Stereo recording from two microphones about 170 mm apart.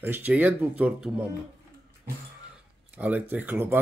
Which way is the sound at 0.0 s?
10° right (ahead or behind).